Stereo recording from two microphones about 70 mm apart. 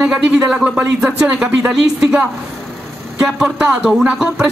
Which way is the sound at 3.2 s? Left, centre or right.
Centre.